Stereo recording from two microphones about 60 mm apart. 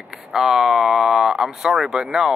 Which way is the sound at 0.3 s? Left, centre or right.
Centre.